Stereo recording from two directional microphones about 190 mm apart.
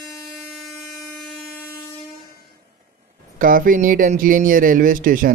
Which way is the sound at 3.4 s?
45° right (ahead or behind).